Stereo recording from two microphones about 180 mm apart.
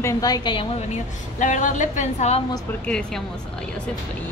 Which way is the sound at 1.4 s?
45° left (ahead or behind).